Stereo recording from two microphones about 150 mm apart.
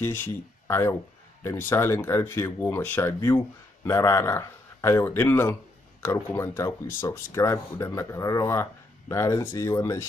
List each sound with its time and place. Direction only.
0.0 s speech: 15° left (ahead or behind)